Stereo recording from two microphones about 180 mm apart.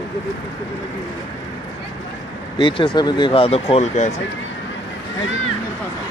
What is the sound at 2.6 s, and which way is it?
Speech, 25° left (ahead or behind).